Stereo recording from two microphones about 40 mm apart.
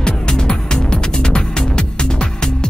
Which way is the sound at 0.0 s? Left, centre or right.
Left.